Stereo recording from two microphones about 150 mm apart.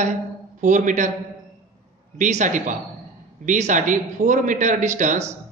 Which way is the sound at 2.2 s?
55° right (ahead or behind).